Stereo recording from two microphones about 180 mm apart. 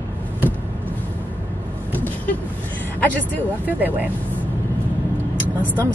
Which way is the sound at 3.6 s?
10° right (ahead or behind).